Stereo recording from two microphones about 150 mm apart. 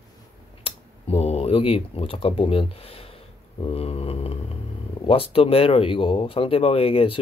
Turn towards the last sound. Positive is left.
turn(degrees=40)  # may be behind; listen again after turning